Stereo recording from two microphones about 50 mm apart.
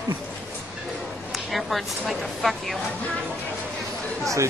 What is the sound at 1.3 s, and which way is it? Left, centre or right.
A woman's voice, centre.